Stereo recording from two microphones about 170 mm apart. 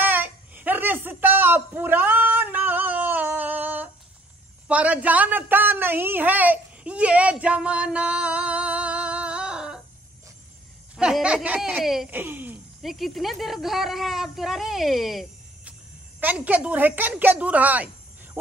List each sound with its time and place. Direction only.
0.0 s a sound: 10° right (ahead or behind)
4.6 s a woman's voice: 10° right (ahead or behind)
11.0 s speech: 5° right (ahead or behind)
12.9 s a woman's voice: centre (ahead or behind)